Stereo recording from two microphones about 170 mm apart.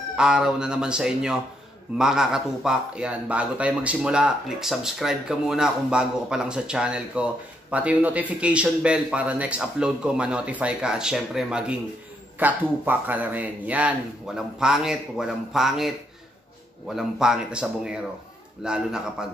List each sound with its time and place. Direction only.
0.1 s a man's voice: 5° right (ahead or behind)
16.9 s speech: 5° right (ahead or behind)